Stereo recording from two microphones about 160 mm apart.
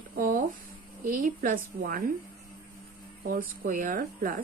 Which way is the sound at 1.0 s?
60° right (ahead or behind).